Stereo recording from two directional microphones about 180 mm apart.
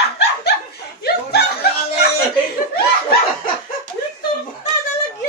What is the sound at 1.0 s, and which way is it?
Chuckle, 60° left (ahead or behind).